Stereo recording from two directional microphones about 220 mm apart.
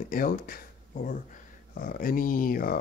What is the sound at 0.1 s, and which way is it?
Speech, 40° left (ahead or behind).